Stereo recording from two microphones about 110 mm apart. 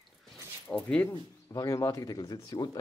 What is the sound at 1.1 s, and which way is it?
Speech, 30° left (ahead or behind).